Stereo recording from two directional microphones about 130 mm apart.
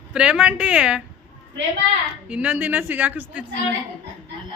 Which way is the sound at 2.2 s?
10° right (ahead or behind).